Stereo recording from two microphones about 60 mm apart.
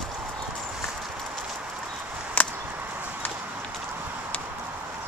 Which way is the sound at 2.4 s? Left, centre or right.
Left.